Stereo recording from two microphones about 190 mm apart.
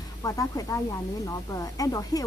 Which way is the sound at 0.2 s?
20° left (ahead or behind).